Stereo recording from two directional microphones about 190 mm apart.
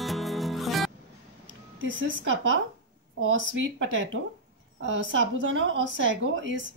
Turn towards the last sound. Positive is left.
turn(degrees=-75)  # may be behind; listen again after turning